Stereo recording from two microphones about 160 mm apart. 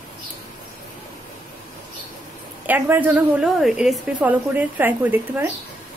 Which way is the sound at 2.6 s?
10° right (ahead or behind).